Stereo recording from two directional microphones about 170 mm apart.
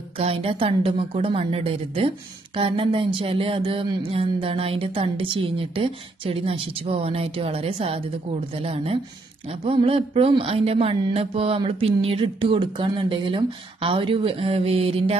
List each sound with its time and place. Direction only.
0.2 s a woman's voice: 35° right (ahead or behind)